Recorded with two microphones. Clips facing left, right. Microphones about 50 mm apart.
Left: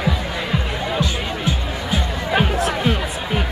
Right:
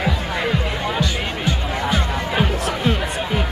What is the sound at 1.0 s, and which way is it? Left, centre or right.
Music, centre.